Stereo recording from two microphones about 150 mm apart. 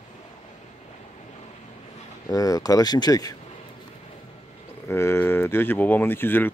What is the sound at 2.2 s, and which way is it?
Speech, 25° left (ahead or behind).